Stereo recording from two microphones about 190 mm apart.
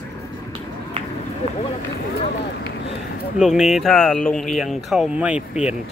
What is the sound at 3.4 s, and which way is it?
Speech, centre (ahead or behind).